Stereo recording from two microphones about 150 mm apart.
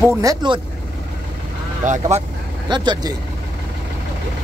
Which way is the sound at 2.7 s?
30° right (ahead or behind).